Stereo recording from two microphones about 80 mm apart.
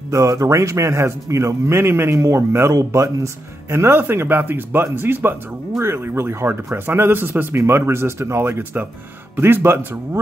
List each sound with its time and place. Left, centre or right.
0.1 s speech: right